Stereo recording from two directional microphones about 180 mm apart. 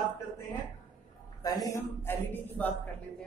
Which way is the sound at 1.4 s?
20° left (ahead or behind).